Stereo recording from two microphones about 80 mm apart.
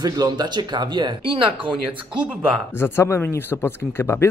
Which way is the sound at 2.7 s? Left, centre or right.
Left.